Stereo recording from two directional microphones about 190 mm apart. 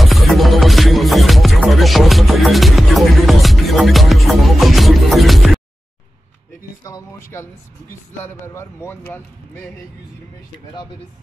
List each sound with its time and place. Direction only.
0.0 s music: centre (ahead or behind)
6.8 s a sound: 15° left (ahead or behind)
8.2 s a man's voice: 10° left (ahead or behind)